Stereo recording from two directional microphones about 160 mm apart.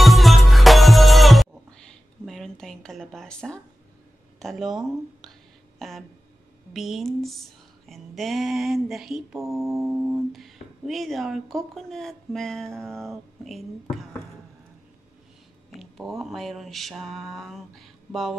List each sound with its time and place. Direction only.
0.0 s music: centre (ahead or behind)
4.4 s speech: centre (ahead or behind)
5.8 s a sound: centre (ahead or behind)
6.7 s speech: centre (ahead or behind)
9.4 s music: 20° right (ahead or behind)
9.8 s speech: centre (ahead or behind)
15.8 s speech: centre (ahead or behind)